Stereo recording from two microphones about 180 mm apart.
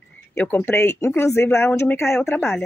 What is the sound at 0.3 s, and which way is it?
Speech, 10° left (ahead or behind).